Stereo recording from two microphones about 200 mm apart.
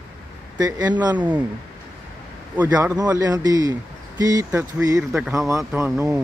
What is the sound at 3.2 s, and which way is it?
Speech, 20° right (ahead or behind).